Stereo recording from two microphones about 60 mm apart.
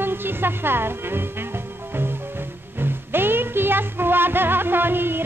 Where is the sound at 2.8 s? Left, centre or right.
Right.